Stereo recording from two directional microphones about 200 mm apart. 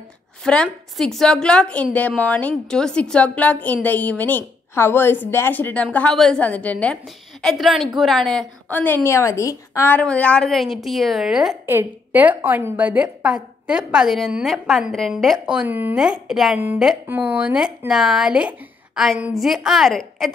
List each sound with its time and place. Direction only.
0.4 s a woman's voice: 5° left (ahead or behind)